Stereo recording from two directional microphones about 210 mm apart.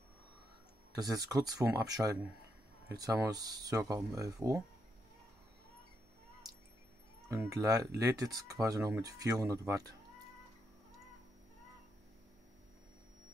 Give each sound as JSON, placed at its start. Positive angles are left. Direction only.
{"t": 0.9, "sound": "speech", "side_deg": -20}
{"t": 7.2, "sound": "speech", "side_deg": -15}